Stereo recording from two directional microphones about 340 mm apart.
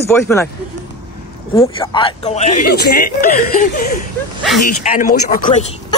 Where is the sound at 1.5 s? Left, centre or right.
Centre.